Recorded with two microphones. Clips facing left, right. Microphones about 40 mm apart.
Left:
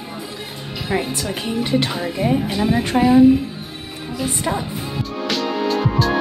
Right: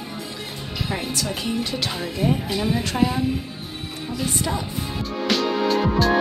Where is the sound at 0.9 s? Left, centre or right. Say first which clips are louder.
Left 6 dB; centre.